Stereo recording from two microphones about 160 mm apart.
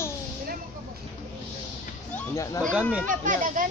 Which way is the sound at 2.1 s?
20° left (ahead or behind).